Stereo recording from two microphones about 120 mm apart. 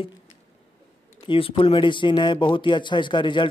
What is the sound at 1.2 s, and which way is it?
Speech, 45° left (ahead or behind).